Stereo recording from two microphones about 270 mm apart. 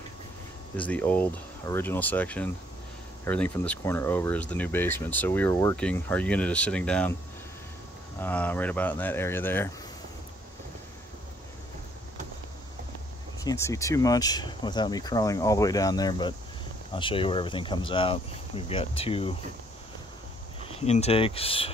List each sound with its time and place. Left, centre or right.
0.7 s speech: centre
8.2 s speech: centre
13.4 s speech: centre
20.6 s speech: left